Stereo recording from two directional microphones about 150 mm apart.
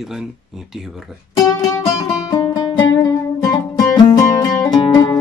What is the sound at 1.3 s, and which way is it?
Music, 25° left (ahead or behind).